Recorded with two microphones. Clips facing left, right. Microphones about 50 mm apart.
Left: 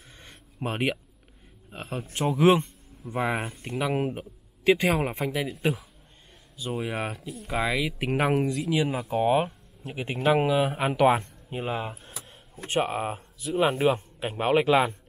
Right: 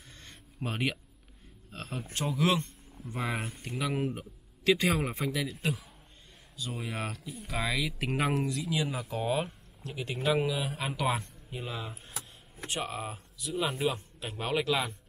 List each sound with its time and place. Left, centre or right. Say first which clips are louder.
0.2 s a sound: left 5 dB; centre
1.7 s speech: left 4 dB; centre
3.7 s a man's voice: left 5 dB; centre
6.5 s speech: left 7 dB; left